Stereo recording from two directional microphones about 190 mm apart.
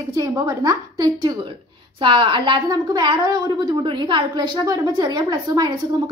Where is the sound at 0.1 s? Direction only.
20° right (ahead or behind).